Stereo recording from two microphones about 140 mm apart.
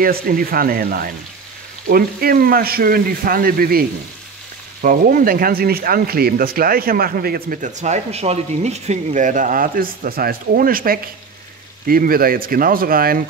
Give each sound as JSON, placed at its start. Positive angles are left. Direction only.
{"t": 0.0, "sound": "speech", "side_deg": -90}
{"t": 4.8, "sound": "speech", "side_deg": -90}